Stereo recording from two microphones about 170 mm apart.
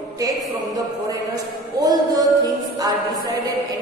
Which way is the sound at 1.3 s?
20° right (ahead or behind).